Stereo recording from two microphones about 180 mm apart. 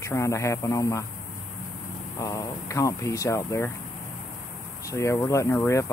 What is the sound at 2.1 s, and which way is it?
Speech, 15° left (ahead or behind).